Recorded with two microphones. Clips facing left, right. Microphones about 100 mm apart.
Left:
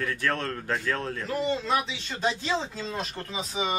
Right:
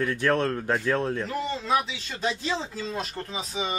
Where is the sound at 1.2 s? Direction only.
Centre (ahead or behind).